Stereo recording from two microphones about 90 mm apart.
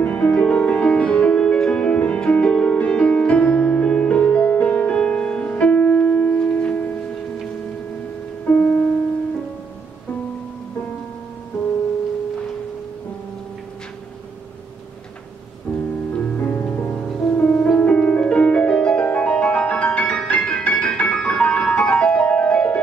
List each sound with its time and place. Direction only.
0.0 s music: 15° left (ahead or behind)
8.5 s music: 20° left (ahead or behind)
15.7 s music: 20° left (ahead or behind)